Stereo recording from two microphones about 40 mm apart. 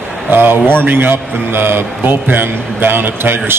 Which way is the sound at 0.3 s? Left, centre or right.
Right.